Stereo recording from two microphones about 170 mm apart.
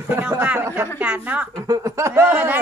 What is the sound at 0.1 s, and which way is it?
A man's voice, 10° right (ahead or behind).